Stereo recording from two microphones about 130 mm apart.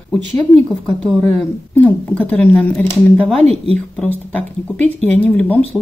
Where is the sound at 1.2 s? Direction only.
15° left (ahead or behind).